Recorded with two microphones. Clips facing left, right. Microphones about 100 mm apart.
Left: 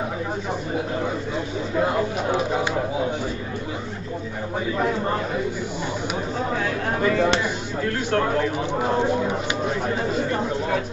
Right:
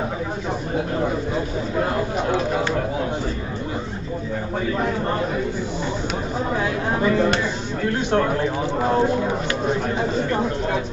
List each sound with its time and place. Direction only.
6.5 s speech: 15° right (ahead or behind)